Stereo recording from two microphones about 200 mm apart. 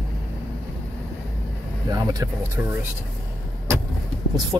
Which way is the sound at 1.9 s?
20° right (ahead or behind).